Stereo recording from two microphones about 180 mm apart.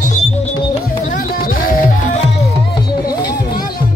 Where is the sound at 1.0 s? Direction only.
50° left (ahead or behind).